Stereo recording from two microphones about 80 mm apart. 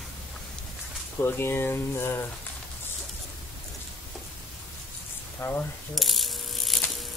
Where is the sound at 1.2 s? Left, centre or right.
Left.